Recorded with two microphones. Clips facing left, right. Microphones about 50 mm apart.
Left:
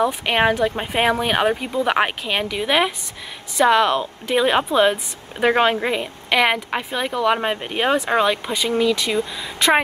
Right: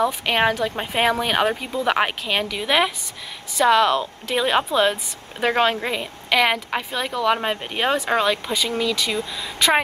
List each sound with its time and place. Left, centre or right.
0.0 s a woman's voice: centre